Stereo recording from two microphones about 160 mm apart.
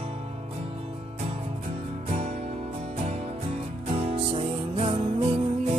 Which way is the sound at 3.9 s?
40° right (ahead or behind).